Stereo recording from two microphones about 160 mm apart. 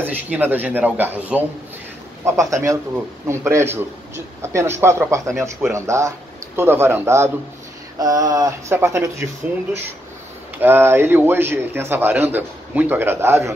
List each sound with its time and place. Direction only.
0.0 s a man's voice: 10° right (ahead or behind)
10.6 s a man's voice: 15° right (ahead or behind)